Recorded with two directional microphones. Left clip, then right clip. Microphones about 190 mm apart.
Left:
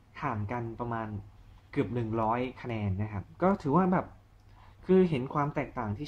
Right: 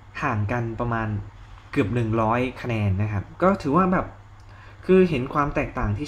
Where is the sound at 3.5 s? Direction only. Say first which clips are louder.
Right 5 dB; 15° left (ahead or behind).